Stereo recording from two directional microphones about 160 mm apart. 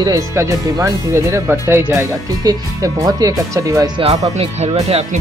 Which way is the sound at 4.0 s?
40° right (ahead or behind).